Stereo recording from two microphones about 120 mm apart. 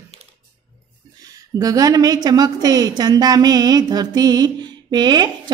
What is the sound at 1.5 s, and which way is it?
A woman's voice, 30° right (ahead or behind).